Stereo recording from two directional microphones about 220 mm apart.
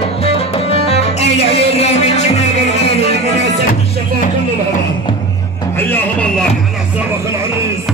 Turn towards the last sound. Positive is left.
turn(degrees=5)  # may be behind; listen again after turning